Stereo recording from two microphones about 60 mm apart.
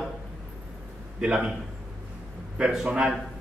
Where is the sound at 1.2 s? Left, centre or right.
Centre.